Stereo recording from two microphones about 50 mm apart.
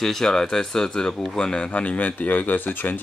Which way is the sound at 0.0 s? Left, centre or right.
Centre.